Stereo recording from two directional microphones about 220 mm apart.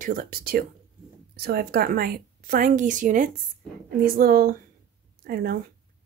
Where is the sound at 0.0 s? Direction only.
40° right (ahead or behind).